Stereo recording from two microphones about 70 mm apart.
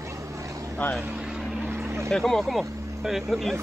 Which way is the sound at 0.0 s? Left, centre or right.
Right.